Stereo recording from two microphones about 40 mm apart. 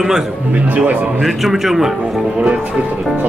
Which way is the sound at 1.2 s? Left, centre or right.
Centre.